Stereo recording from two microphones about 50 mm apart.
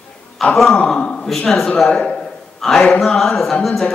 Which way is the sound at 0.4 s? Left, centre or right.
Centre.